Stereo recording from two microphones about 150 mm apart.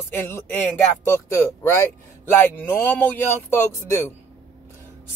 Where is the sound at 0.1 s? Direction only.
15° left (ahead or behind).